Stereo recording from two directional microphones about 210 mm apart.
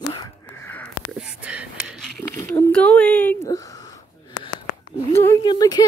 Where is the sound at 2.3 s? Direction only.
10° left (ahead or behind).